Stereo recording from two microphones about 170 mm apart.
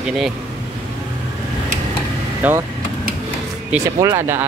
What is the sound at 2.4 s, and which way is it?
Speech, 10° right (ahead or behind).